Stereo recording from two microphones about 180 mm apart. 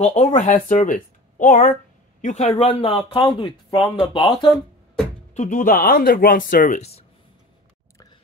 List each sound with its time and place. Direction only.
0.0 s speech: 40° left (ahead or behind)
4.5 s music: 5° left (ahead or behind)
5.3 s speech: 45° left (ahead or behind)